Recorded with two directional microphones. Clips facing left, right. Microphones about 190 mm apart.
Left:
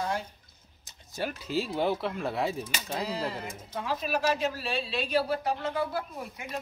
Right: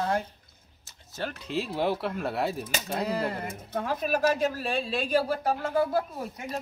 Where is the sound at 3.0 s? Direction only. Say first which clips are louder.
Right 4 dB; 55° right (ahead or behind).